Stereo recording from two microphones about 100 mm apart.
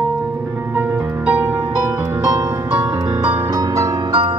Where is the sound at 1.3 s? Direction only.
15° right (ahead or behind).